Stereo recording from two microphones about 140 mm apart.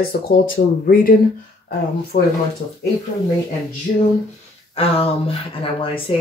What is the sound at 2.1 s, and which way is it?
Speech, 80° left.